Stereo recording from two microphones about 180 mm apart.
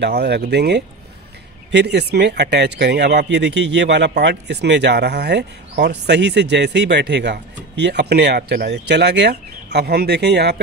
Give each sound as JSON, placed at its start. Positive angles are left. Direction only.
{"t": 0.0, "sound": "speech", "side_deg": -65}